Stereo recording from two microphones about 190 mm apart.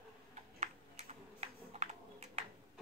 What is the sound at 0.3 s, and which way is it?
Typing, 35° right (ahead or behind).